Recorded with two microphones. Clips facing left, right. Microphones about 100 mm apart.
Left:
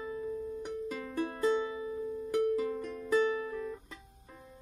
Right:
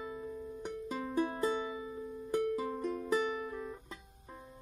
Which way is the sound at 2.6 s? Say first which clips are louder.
Left 1 dB; 25° right (ahead or behind).